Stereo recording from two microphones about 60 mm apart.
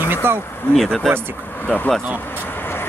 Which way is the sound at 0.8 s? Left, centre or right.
Centre.